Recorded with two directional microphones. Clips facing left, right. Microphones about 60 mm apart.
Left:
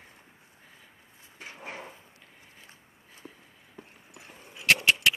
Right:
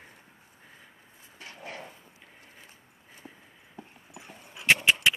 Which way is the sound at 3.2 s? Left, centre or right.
Centre.